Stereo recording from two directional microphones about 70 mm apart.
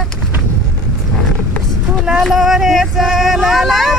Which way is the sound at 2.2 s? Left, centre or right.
Centre.